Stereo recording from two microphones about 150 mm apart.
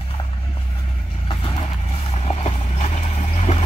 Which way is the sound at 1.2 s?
40° left (ahead or behind).